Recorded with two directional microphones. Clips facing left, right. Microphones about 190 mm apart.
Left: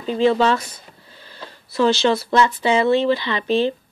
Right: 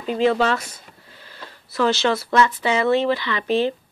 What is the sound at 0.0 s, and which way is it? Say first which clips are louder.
Speech: left 2 dB; 30° left (ahead or behind).